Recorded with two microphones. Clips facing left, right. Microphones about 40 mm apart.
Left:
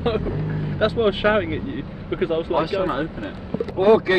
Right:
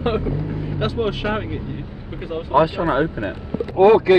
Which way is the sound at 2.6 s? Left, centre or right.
Right.